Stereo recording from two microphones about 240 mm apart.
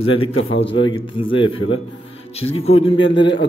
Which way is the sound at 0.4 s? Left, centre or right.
Left.